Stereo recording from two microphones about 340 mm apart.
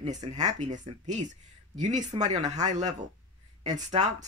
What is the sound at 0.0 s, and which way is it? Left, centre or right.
Speech, centre.